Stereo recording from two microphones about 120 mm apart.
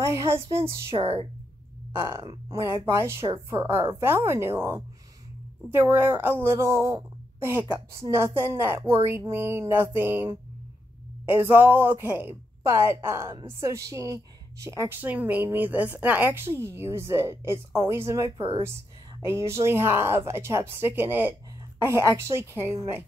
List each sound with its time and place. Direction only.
0.0 s speech: 25° right (ahead or behind)
0.9 s speech: 50° right (ahead or behind)
1.9 s a woman's voice: 20° right (ahead or behind)